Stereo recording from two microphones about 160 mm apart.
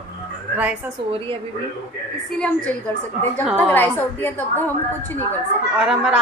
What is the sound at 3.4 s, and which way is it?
A woman's voice, 5° left (ahead or behind).